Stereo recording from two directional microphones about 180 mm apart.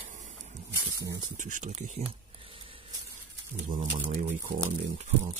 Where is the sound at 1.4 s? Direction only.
45° right (ahead or behind).